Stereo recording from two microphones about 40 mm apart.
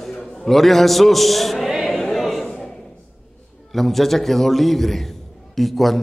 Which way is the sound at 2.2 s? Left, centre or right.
Centre.